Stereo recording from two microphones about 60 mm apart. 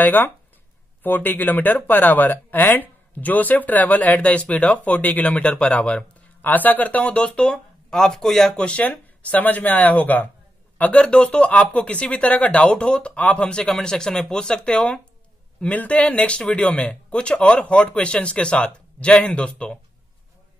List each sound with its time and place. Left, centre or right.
0.0 s speech: left
6.4 s speech: left